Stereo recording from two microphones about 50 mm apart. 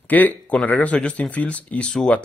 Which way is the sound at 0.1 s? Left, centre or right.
Left.